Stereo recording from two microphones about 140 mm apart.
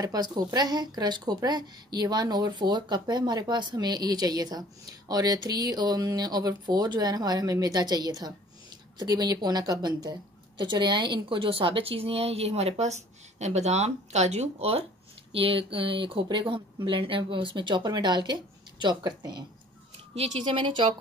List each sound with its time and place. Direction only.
0.0 s speech: 30° right (ahead or behind)
20.4 s speech: 35° right (ahead or behind)